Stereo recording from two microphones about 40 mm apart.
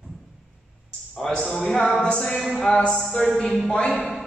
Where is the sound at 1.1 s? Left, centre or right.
Centre.